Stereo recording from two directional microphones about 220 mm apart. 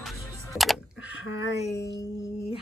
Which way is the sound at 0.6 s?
5° right (ahead or behind).